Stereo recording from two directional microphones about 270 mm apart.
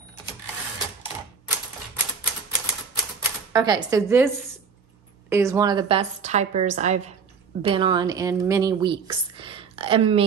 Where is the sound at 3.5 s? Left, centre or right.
Centre.